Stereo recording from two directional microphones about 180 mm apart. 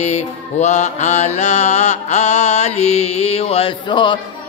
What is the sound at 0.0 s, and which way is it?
Mantra, 40° left (ahead or behind).